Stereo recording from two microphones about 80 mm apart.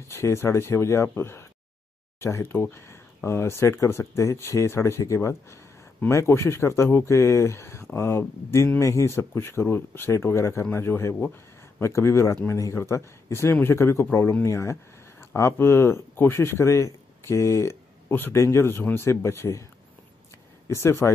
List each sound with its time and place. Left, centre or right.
0.1 s speech: left
18.3 s speech: left
20.6 s speech: left